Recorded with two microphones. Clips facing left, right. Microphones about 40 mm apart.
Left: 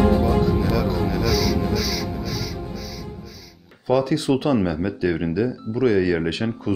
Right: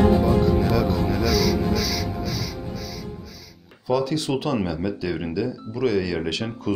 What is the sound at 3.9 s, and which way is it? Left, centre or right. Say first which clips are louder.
Speech: left 3 dB; left.